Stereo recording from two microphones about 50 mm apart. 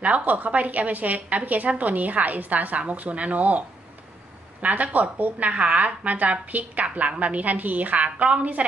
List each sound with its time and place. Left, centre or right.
0.0 s a woman's voice: right